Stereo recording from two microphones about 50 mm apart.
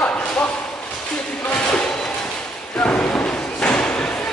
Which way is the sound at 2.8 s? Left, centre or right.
Left.